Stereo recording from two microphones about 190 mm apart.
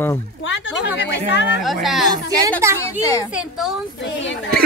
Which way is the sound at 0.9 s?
65° left (ahead or behind).